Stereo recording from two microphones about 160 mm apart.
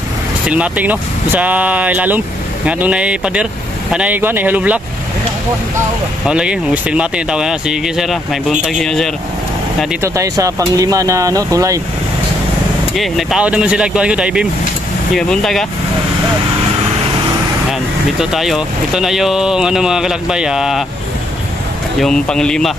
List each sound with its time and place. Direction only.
0.5 s speech: 10° right (ahead or behind)
6.2 s speech: 5° right (ahead or behind)
10.0 s speech: 20° right (ahead or behind)
12.9 s speech: centre (ahead or behind)
18.2 s speech: centre (ahead or behind)
22.0 s speech: 5° left (ahead or behind)